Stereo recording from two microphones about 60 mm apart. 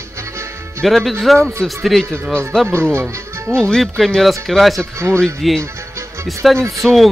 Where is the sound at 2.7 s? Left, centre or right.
Right.